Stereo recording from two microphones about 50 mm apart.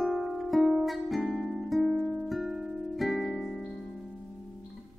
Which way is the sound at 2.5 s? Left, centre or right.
Centre.